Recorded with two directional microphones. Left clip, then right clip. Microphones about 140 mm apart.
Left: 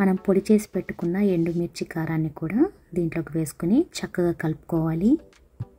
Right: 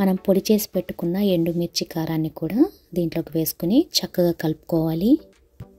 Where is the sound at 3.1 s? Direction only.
45° right (ahead or behind).